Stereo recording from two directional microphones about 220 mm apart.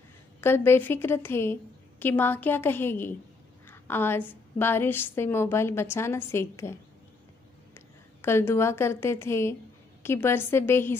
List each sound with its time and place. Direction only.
0.4 s a woman's voice: 10° left (ahead or behind)
7.7 s a woman's voice: 10° left (ahead or behind)